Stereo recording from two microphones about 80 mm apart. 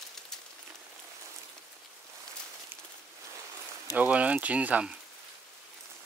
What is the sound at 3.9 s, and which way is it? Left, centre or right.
Speech, centre.